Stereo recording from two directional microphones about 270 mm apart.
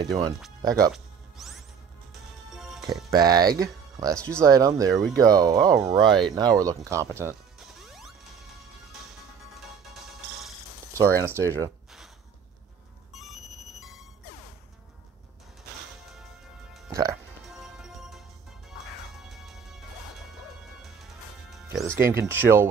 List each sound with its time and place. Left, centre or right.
0.6 s speech: centre
0.9 s music: centre
3.1 s speech: centre
11.0 s speech: centre
13.1 s music: centre
17.5 s music: centre
19.2 s music: centre
20.8 s music: centre